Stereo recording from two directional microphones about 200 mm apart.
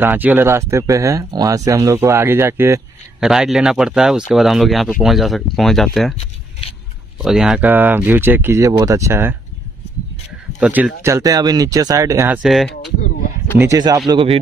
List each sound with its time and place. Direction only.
0.0 s speech: 10° right (ahead or behind)
7.2 s speech: centre (ahead or behind)
10.6 s speech: 5° right (ahead or behind)
12.4 s speech: centre (ahead or behind)
13.6 s speech: 15° right (ahead or behind)